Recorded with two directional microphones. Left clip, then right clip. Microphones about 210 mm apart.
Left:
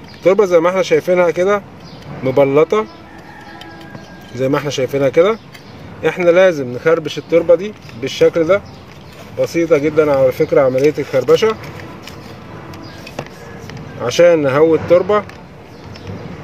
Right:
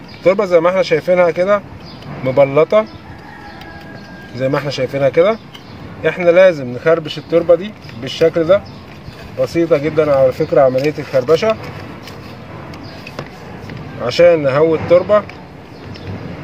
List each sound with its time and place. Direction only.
0.2 s speech: 45° left (ahead or behind)
4.4 s speech: 45° left (ahead or behind)
14.0 s speech: 45° left (ahead or behind)